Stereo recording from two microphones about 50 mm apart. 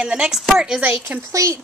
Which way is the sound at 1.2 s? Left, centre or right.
Right.